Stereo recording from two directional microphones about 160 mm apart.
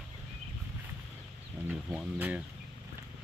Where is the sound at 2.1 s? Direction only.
10° right (ahead or behind).